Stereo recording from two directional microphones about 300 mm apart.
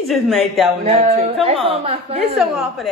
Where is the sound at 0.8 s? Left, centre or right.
Right.